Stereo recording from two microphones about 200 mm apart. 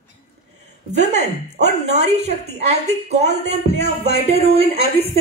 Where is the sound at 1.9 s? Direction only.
35° right (ahead or behind).